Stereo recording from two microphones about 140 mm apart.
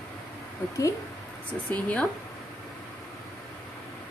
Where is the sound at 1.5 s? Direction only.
10° left (ahead or behind).